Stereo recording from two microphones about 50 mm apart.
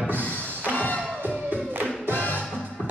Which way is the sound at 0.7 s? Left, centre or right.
Left.